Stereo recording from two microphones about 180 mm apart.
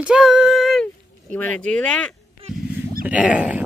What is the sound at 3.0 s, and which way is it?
Speech, 5° right (ahead or behind).